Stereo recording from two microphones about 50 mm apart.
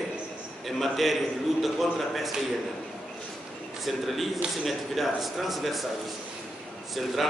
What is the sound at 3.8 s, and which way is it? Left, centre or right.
A man's voice, centre.